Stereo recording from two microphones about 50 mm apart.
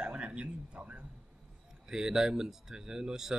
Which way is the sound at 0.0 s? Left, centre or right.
Right.